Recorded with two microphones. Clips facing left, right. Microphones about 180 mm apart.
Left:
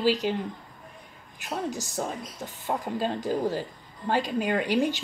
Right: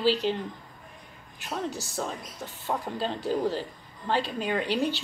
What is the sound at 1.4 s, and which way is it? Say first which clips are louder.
A woman's voice: left 1 dB; 15° left (ahead or behind).